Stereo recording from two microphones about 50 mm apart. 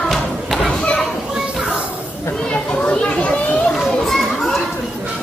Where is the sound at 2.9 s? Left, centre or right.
Left.